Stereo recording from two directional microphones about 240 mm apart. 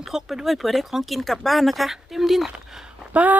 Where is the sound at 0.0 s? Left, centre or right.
Centre.